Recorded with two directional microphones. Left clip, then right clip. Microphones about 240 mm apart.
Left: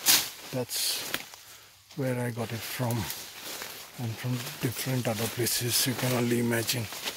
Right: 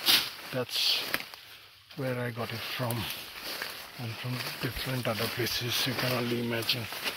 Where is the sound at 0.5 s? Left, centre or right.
Left.